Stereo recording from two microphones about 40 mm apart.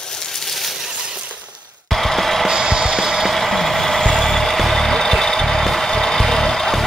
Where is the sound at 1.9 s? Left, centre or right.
Centre.